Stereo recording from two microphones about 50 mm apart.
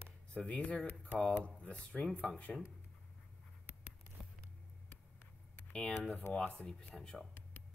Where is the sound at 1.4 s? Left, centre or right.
Left.